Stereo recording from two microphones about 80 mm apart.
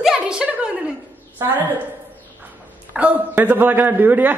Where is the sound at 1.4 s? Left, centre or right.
Right.